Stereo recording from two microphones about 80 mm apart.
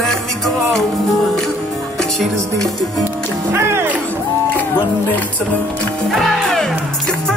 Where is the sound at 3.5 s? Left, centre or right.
Right.